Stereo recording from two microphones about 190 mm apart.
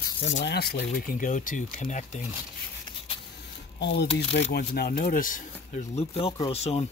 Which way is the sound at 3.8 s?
65° left (ahead or behind).